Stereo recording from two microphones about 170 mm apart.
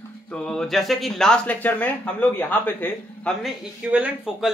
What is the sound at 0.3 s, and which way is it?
A man's voice, 5° left (ahead or behind).